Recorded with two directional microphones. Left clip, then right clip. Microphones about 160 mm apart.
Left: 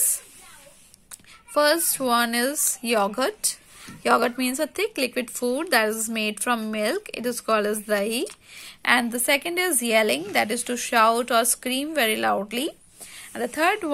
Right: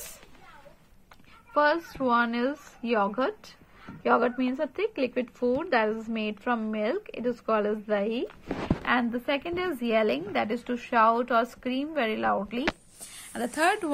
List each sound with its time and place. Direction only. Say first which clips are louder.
1.5 s a woman's voice: left 4 dB; 20° left (ahead or behind)